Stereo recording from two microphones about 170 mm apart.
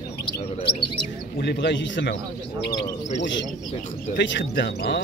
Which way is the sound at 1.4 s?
85° left.